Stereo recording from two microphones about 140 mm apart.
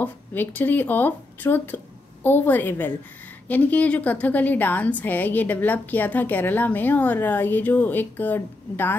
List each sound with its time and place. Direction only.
0.0 s a woman's voice: 10° left (ahead or behind)